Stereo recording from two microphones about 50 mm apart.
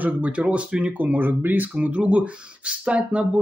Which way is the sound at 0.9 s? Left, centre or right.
Right.